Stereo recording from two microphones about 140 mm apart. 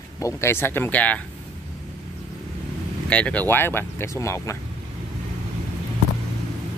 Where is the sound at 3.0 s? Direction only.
10° left (ahead or behind).